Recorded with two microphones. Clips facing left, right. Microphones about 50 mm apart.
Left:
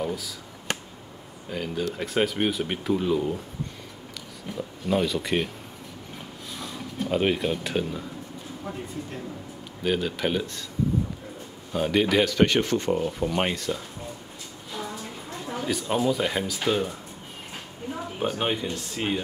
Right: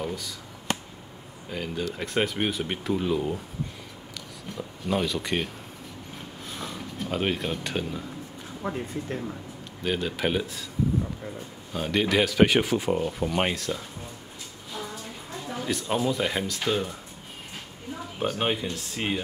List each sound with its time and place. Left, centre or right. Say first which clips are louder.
0.0 s speech: left 3 dB; centre
1.5 s speech: left 2 dB; centre
4.6 s speech: left 2 dB; centre
7.0 s speech: left 4 dB; centre
8.6 s speech: right 5 dB; right
9.8 s speech: left 2 dB; centre
11.7 s speech: left 2 dB; centre
15.6 s speech: left 2 dB; centre
18.4 s speech: even; centre